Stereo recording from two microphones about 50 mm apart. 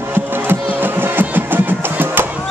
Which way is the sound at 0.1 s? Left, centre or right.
Right.